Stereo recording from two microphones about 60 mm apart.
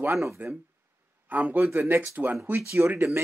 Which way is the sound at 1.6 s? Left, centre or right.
Right.